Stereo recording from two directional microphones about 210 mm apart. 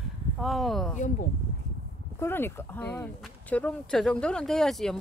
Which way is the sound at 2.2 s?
10° left (ahead or behind).